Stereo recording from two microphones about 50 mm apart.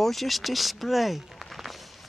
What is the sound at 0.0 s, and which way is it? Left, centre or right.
Speech, centre.